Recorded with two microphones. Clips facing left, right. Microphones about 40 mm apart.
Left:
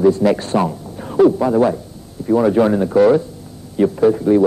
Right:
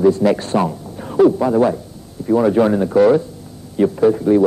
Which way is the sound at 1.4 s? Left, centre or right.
Centre.